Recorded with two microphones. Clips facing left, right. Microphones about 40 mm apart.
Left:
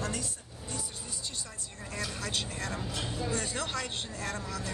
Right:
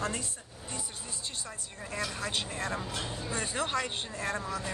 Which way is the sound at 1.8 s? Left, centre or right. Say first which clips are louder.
Right 2 dB; centre.